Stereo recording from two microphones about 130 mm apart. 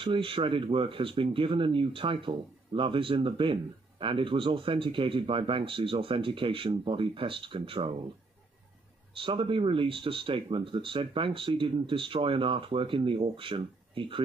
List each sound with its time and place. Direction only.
0.0 s speech: 40° right (ahead or behind)
9.1 s speech: 40° right (ahead or behind)